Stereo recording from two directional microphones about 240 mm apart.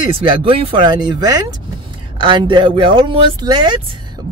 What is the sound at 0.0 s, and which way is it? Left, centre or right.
Speech, right.